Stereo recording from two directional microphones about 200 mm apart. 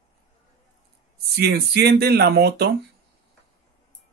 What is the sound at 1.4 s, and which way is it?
Speech, 55° right (ahead or behind).